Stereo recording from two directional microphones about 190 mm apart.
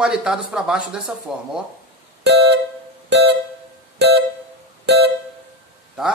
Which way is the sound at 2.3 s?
65° right (ahead or behind).